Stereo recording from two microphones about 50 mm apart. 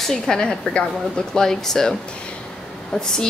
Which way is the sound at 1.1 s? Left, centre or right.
Centre.